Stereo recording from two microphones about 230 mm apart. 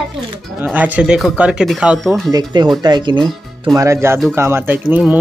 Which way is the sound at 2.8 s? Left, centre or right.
Centre.